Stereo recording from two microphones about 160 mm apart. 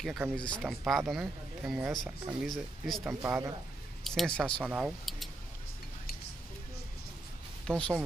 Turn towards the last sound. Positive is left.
turn(degrees=5)  # may be behind; listen again after turning